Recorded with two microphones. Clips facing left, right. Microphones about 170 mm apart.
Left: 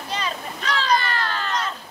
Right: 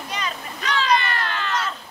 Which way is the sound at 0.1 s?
35° left (ahead or behind).